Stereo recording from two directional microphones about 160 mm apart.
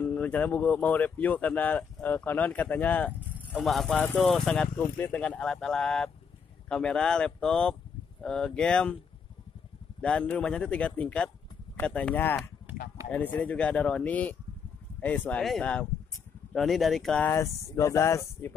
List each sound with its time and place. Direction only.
0.0 s speech: 10° left (ahead or behind)
3.1 s vehicle: 10° right (ahead or behind)
3.6 s speech: centre (ahead or behind)
10.0 s speech: 5° left (ahead or behind)
13.4 s speech: 5° left (ahead or behind)
17.3 s speech: 20° left (ahead or behind)